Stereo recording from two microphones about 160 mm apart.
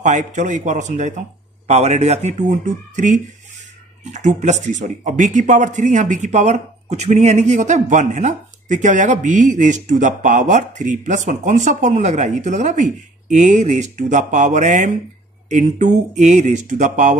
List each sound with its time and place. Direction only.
0.0 s speech: 50° right (ahead or behind)